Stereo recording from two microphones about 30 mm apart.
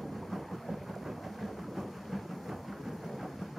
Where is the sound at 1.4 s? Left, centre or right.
Centre.